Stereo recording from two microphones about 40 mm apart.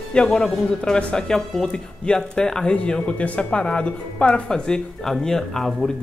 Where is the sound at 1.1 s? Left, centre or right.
Centre.